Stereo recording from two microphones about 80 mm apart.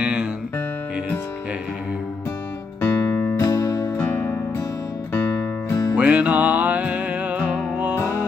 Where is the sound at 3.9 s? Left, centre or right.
Centre.